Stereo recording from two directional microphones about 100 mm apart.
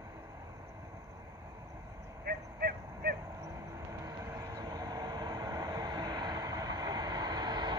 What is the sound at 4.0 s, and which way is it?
Vehicle, 30° right (ahead or behind).